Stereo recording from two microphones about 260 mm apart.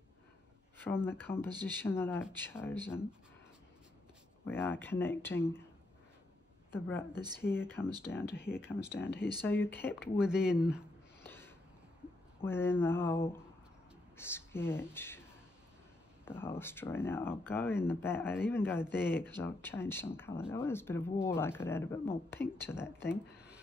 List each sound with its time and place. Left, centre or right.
0.7 s speech: centre
4.5 s speech: centre
6.7 s speech: centre
7.1 s speech: centre
7.4 s speech: centre
8.7 s speech: centre
9.4 s speech: centre
10.1 s speech: centre
11.2 s snort: centre
12.4 s speech: centre
16.3 s speech: centre